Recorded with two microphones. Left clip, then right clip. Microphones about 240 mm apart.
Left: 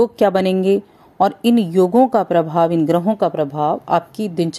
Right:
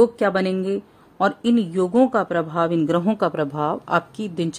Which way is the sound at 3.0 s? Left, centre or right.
Centre.